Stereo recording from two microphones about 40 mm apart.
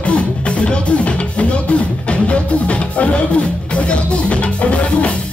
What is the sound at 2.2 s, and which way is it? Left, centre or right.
Music, left.